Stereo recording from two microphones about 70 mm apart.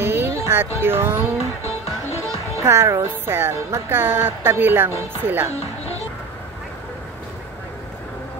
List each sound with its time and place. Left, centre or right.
0.0 s music: right
2.6 s speech: right